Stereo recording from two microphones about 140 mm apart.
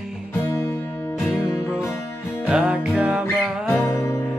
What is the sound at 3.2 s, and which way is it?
Music, 15° left (ahead or behind).